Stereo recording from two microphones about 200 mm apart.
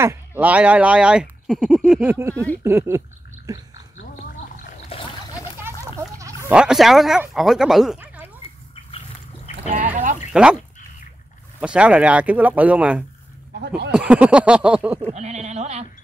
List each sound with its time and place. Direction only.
0.4 s speech: 5° right (ahead or behind)
2.1 s speech: 15° right (ahead or behind)
5.6 s a sound: 15° right (ahead or behind)
6.5 s speech: 5° right (ahead or behind)
10.3 s speech: 5° right (ahead or behind)
11.6 s speech: 5° right (ahead or behind)
13.6 s speech: 55° right (ahead or behind)
13.9 s speech: 5° right (ahead or behind)
15.0 s speech: 35° right (ahead or behind)